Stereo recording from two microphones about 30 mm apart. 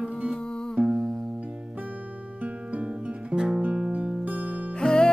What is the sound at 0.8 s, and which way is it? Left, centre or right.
Music, right.